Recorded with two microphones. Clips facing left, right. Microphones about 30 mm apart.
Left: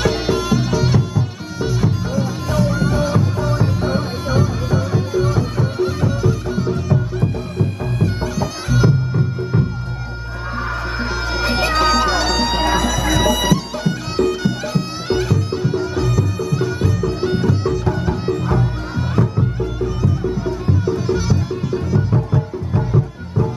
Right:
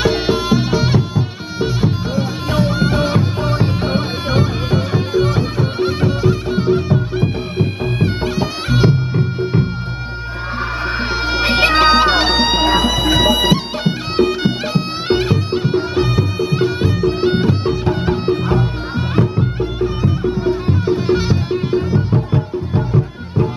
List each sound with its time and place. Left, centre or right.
0.0 s music: right
11.0 s music: right